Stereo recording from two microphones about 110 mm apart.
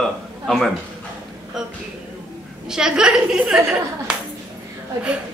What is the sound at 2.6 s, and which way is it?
A woman's voice, 5° right (ahead or behind).